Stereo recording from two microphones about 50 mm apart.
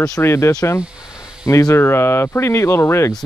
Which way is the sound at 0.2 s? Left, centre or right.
Left.